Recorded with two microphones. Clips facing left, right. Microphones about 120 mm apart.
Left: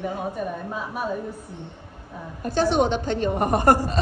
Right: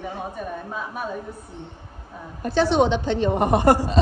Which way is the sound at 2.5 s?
45° left (ahead or behind).